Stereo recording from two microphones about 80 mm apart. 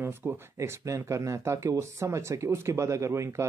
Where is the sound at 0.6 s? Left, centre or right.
Right.